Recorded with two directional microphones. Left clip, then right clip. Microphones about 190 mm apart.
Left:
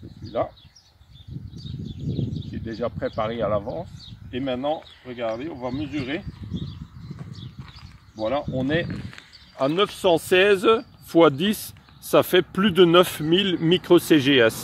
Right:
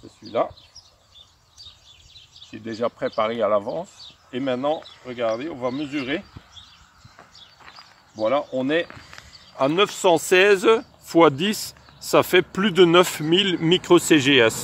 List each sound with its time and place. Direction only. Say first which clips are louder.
2.5 s speech: right 4 dB; 5° left (ahead or behind)
8.2 s speech: right 3 dB; centre (ahead or behind)
9.6 s speech: right 2 dB; 15° left (ahead or behind)